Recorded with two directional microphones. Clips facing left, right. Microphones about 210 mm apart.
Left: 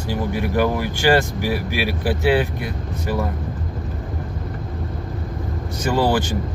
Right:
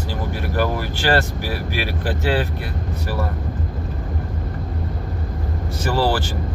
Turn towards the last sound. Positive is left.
turn(degrees=15)  # may be behind; listen again after turning